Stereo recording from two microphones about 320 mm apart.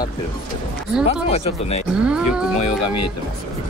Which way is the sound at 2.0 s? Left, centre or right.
Centre.